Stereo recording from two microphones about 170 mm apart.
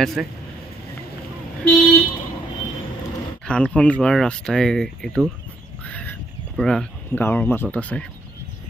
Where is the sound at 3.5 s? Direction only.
5° left (ahead or behind).